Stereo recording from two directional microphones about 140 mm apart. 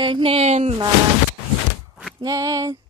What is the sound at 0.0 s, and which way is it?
Speech, 40° right (ahead or behind).